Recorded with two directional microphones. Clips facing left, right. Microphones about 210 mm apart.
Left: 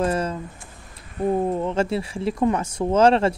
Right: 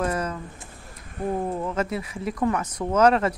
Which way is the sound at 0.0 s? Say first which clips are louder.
Left 3 dB; 30° left (ahead or behind).